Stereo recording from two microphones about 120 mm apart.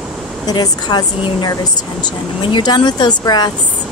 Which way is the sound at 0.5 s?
35° left (ahead or behind).